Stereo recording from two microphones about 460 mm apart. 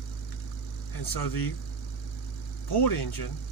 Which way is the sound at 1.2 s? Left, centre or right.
Left.